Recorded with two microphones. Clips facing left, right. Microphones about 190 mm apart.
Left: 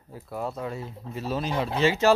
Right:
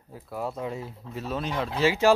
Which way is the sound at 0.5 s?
15° right (ahead or behind).